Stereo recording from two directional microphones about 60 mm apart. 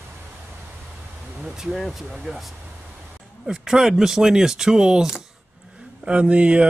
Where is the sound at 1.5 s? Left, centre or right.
Centre.